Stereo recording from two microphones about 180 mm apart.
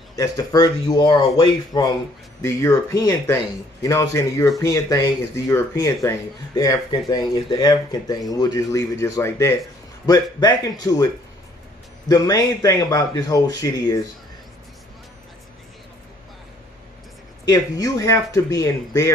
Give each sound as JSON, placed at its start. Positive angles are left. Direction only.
{"t": 0.1, "sound": "speech", "side_deg": 20}
{"t": 12.1, "sound": "speech", "side_deg": 20}
{"t": 17.5, "sound": "speech", "side_deg": 20}